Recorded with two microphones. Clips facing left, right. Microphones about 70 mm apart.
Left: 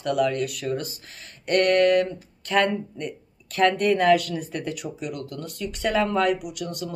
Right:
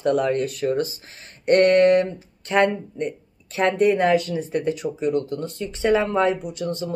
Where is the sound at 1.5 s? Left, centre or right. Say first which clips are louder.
Right 4 dB; right.